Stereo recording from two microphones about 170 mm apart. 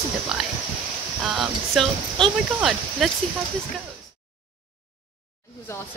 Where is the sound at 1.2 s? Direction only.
Centre (ahead or behind).